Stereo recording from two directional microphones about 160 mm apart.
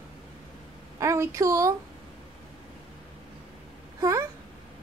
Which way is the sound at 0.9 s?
20° right (ahead or behind).